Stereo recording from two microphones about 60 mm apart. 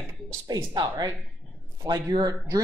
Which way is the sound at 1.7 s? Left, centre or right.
Right.